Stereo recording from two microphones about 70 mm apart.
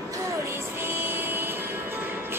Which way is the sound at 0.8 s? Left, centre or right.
Right.